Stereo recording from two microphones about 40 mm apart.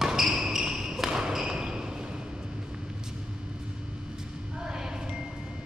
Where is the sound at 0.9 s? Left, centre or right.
Centre.